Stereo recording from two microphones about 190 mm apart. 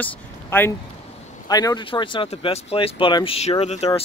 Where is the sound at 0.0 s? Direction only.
10° left (ahead or behind).